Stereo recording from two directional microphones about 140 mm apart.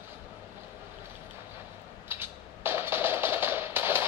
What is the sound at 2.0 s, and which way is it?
Music, 15° right (ahead or behind).